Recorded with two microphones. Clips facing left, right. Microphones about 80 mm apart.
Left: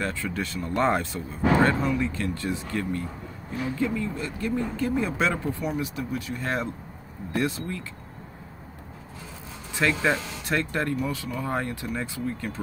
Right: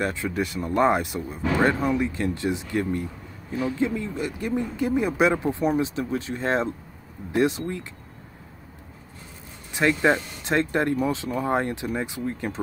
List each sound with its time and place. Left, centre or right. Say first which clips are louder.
0.0 s speech: right 3 dB; right
9.8 s speech: right 3 dB; right